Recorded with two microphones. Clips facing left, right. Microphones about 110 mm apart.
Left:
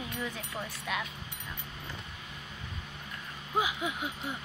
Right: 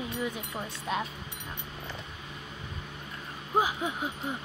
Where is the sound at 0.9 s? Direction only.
35° right (ahead or behind).